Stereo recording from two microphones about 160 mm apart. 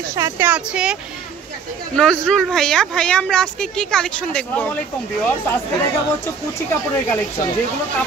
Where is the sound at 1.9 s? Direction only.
5° left (ahead or behind).